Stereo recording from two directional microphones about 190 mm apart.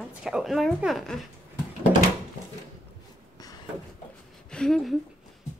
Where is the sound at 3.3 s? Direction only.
20° left (ahead or behind).